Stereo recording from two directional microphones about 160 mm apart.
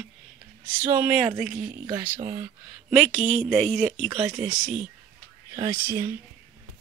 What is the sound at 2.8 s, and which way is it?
Speech, centre (ahead or behind).